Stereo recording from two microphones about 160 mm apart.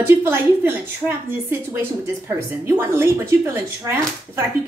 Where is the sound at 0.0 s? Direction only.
15° right (ahead or behind).